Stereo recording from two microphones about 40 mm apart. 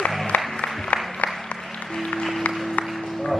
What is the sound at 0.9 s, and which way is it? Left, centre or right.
Applause, left.